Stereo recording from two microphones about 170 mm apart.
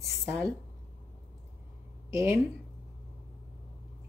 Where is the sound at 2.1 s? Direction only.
15° right (ahead or behind).